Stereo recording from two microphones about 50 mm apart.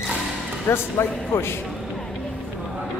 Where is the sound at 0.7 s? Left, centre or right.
Left.